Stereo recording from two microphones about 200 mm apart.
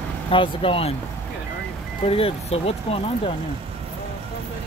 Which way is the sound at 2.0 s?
30° left (ahead or behind).